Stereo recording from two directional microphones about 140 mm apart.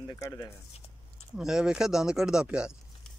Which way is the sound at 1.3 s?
5° right (ahead or behind).